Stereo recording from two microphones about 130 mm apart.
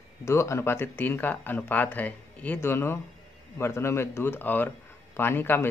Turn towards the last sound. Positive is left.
turn(degrees=15)  # may be behind; listen again after turning